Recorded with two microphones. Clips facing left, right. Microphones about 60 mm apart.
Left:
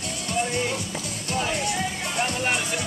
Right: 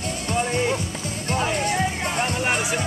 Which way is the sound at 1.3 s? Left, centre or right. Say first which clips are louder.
Right 3 dB; right.